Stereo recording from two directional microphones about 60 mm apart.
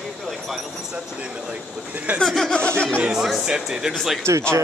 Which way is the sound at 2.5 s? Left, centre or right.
Centre.